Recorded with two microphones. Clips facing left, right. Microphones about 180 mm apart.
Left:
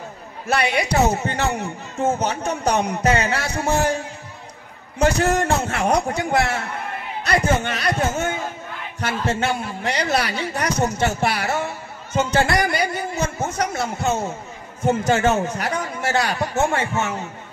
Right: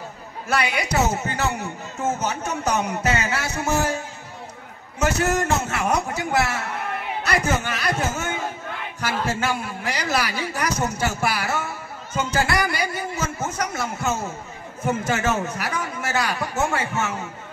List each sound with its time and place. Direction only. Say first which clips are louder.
0.5 s a man's voice: left 3 dB; 30° left (ahead or behind)